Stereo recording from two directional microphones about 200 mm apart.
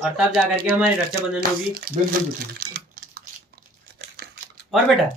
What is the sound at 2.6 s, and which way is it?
Speech, 50° right (ahead or behind).